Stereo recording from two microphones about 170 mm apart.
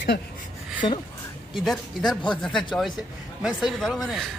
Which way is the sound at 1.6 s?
Centre (ahead or behind).